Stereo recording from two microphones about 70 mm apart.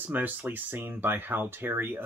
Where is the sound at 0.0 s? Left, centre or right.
Right.